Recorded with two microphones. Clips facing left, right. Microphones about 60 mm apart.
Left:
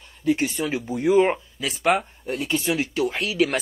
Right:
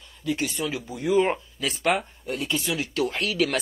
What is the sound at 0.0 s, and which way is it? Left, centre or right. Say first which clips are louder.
Speech: left 5 dB; left.